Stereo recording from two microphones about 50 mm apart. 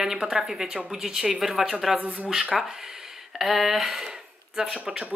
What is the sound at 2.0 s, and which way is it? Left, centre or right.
Speech, right.